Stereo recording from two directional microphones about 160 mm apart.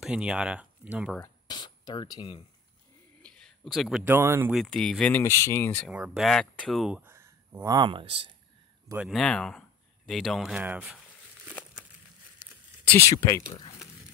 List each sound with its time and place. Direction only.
0.0 s speech: 5° right (ahead or behind)
1.2 s a sound: 25° left (ahead or behind)
3.2 s a sound: 5° left (ahead or behind)
4.0 s speech: 15° right (ahead or behind)
4.6 s speech: 5° left (ahead or behind)
5.2 s speech: 20° left (ahead or behind)
5.9 s speech: 5° right (ahead or behind); by 8.3 s 30° right (ahead or behind)
8.9 s speech: centre (ahead or behind)
12.8 s speech: 15° left (ahead or behind)